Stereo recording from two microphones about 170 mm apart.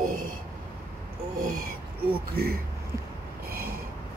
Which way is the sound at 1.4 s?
55° right (ahead or behind).